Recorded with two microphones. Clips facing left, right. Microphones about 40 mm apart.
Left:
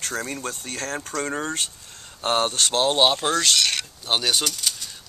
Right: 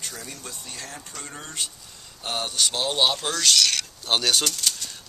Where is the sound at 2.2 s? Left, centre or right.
Left.